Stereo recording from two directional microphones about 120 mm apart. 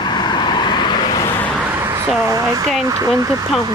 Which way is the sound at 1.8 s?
20° right (ahead or behind).